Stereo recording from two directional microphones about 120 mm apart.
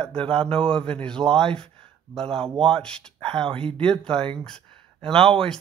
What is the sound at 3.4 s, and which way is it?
Speech, 50° right (ahead or behind).